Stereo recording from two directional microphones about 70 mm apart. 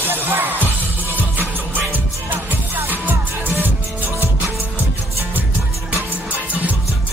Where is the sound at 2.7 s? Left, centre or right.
Right.